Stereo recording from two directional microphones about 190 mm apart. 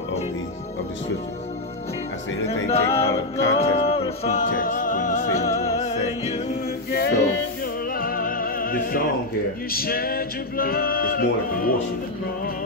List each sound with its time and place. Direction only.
2.4 s music: 35° left (ahead or behind)
6.9 s music: 55° left (ahead or behind)
9.7 s male singing: 50° left (ahead or behind)